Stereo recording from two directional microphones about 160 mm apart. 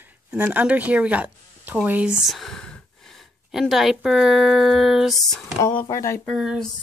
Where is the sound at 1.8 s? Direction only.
10° right (ahead or behind).